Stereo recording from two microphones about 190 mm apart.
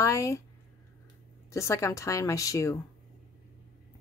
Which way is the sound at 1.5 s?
15° left (ahead or behind).